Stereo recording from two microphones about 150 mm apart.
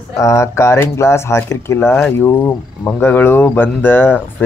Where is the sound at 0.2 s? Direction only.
20° left (ahead or behind).